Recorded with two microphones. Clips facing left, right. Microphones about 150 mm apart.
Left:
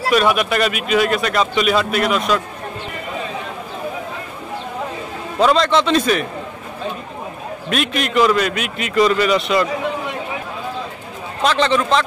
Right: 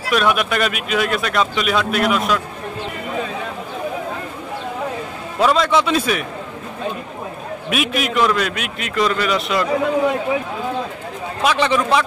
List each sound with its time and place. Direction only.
0.1 s speech: centre (ahead or behind)
5.4 s a man's voice: 5° right (ahead or behind)
7.7 s speech: 5° right (ahead or behind)
11.4 s a man's voice: 10° right (ahead or behind)